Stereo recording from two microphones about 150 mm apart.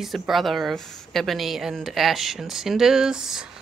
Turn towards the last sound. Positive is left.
turn(degrees=-5)  # may be behind; listen again after turning